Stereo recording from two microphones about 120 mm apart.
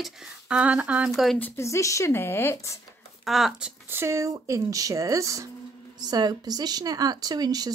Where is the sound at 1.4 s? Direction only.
20° left (ahead or behind).